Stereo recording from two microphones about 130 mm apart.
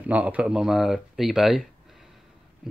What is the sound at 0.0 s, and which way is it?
Speech, 10° right (ahead or behind).